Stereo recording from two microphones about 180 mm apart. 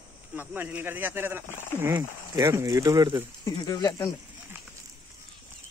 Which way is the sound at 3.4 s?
20° left (ahead or behind).